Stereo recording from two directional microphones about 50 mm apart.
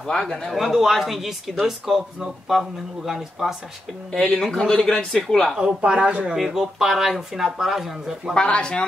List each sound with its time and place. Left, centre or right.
0.0 s speech: centre
0.5 s speech: centre
3.1 s speech: centre
4.4 s speech: centre
5.6 s speech: right
6.3 s speech: centre
8.4 s speech: left